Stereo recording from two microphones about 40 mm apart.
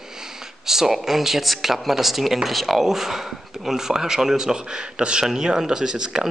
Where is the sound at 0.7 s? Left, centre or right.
Centre.